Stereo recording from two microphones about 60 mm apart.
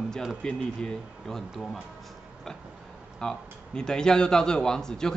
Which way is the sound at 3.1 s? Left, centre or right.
Centre.